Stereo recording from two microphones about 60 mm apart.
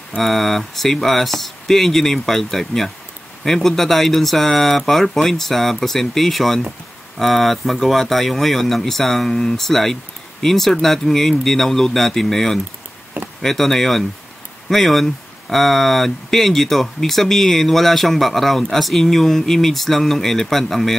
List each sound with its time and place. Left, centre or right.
0.2 s speech: centre